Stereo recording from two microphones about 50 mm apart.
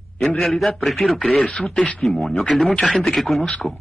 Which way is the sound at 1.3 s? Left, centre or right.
Left.